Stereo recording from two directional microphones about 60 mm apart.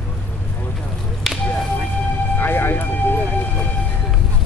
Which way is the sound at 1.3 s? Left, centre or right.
Centre.